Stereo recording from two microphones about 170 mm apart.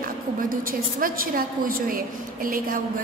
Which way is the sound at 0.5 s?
55° right (ahead or behind).